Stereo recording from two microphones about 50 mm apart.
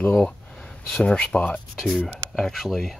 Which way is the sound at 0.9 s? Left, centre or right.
Left.